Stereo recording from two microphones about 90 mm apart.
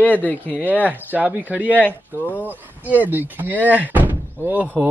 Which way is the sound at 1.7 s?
20° left (ahead or behind).